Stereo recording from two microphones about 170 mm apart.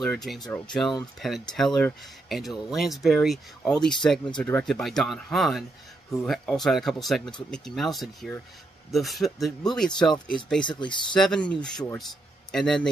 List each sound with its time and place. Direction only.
0.0 s speech: centre (ahead or behind)
10.6 s speech: 25° left (ahead or behind)
11.1 s a man's voice: 5° left (ahead or behind)